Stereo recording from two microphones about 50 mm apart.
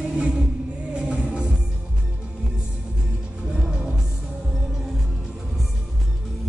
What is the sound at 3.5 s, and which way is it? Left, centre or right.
Music, centre.